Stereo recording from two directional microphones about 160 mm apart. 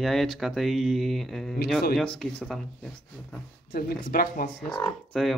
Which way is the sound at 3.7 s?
70° left (ahead or behind).